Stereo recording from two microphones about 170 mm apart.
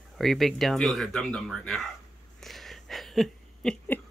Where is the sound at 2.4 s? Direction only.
Centre (ahead or behind).